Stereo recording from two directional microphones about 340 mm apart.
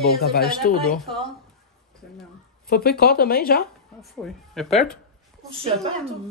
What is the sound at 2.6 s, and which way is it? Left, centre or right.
Speech, left.